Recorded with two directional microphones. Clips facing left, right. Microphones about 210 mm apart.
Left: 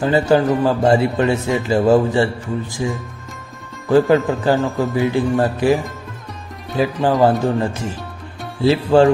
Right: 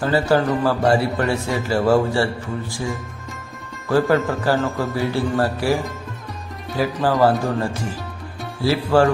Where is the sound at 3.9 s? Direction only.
20° left (ahead or behind).